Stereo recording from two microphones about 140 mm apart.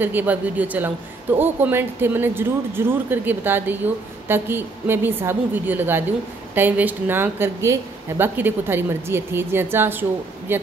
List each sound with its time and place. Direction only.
0.0 s speech: 15° right (ahead or behind)